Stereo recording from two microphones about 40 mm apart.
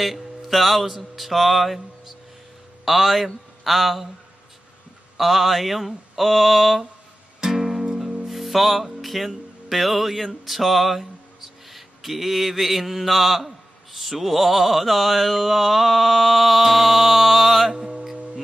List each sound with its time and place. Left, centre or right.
0.0 s speech: centre
0.8 s mantra: centre
2.8 s a man's voice: centre
3.6 s mantra: centre
5.1 s mantra: centre
7.3 s music: centre
13.9 s mantra: centre